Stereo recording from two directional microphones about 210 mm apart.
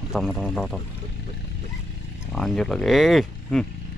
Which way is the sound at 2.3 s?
5° left (ahead or behind).